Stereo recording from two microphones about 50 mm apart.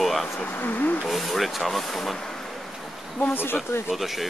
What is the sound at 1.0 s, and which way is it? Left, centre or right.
Speech, centre.